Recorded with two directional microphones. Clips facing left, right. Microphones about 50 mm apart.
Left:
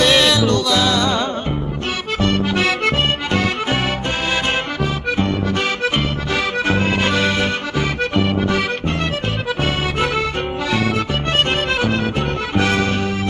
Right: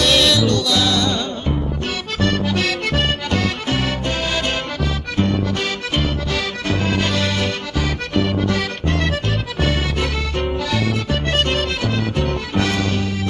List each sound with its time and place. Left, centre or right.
0.0 s music: centre
2.1 s accordion: centre
5.2 s accordion: centre
11.3 s accordion: left